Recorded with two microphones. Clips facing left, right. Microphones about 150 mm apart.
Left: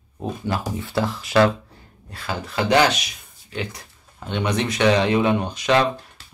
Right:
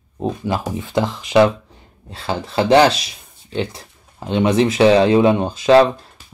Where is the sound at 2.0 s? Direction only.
30° right (ahead or behind).